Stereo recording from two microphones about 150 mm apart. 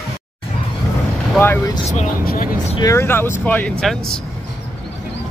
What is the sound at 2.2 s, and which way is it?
Speech, 65° left (ahead or behind).